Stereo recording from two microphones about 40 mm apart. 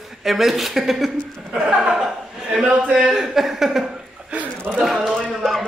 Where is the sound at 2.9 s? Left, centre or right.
Centre.